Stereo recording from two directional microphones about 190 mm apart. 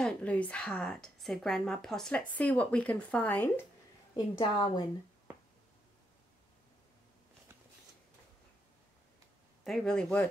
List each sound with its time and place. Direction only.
0.0 s speech: 5° left (ahead or behind)
4.4 s a woman's voice: 20° left (ahead or behind)
9.7 s speech: 5° left (ahead or behind)